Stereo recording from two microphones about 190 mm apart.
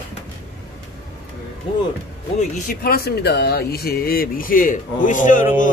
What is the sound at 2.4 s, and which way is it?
Speech, 50° left (ahead or behind).